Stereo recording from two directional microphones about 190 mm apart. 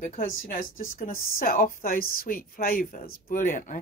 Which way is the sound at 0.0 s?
45° left (ahead or behind).